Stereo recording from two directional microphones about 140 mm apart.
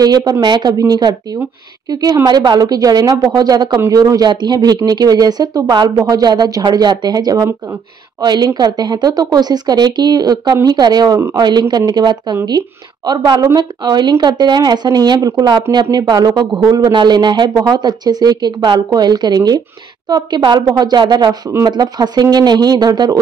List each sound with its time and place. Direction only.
0.0 s a woman's voice: 30° right (ahead or behind)